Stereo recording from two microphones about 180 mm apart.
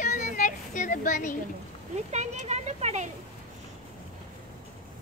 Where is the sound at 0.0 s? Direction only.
45° left (ahead or behind).